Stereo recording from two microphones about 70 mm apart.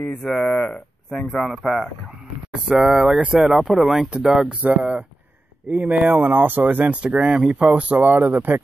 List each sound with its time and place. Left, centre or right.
0.2 s speech: centre; by 8.5 s right